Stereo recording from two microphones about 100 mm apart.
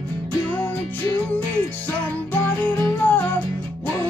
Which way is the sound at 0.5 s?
15° left (ahead or behind).